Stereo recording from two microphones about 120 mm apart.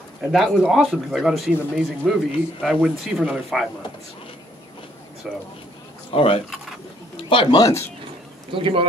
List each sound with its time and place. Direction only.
0.3 s speech: 5° right (ahead or behind)
5.2 s speech: centre (ahead or behind)
6.1 s a man's voice: 50° left (ahead or behind)
7.6 s a man's voice: 20° left (ahead or behind)
8.5 s speech: 45° right (ahead or behind)